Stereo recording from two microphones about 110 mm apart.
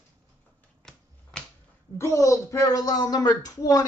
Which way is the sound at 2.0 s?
30° left (ahead or behind).